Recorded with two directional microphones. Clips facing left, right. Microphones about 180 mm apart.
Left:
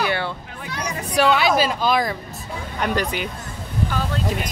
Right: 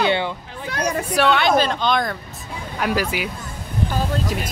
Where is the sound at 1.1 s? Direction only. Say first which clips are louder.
Even; centre (ahead or behind).